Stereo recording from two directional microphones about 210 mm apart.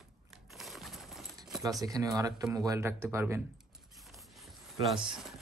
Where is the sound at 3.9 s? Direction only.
Centre (ahead or behind).